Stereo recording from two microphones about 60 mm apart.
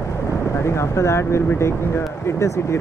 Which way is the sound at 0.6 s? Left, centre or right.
Left.